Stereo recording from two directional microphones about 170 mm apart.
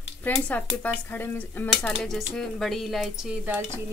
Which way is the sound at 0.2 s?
10° left (ahead or behind).